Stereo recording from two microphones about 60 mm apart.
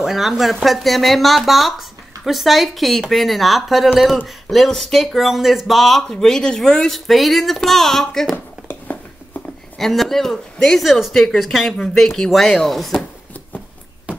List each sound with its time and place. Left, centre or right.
0.0 s speech: centre
8.6 s a sound: left
9.8 s speech: centre